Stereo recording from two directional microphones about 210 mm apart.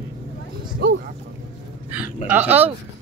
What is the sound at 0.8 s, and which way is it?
Vehicle, 50° right (ahead or behind).